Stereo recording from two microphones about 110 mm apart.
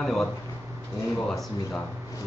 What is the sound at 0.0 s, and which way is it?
Speech, 5° left (ahead or behind).